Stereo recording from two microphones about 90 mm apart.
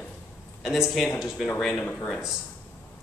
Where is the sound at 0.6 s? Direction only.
5° right (ahead or behind).